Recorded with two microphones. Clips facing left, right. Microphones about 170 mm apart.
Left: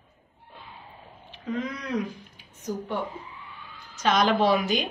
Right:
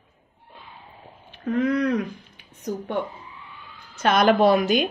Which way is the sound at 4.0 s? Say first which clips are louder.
Right 4 dB; 55° right (ahead or behind).